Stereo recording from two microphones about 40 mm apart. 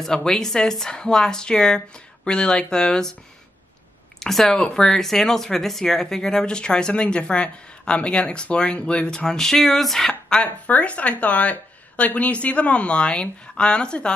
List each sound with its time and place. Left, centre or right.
0.0 s a woman's voice: centre
4.2 s a woman's voice: centre
10.4 s speech: left